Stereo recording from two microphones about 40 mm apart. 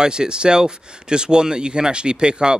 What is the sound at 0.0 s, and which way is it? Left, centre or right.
Speech, right.